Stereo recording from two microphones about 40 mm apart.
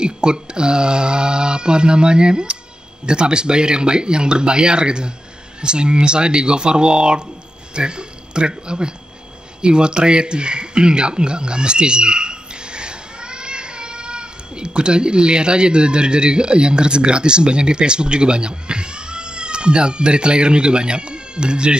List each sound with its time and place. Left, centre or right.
0.0 s speech: right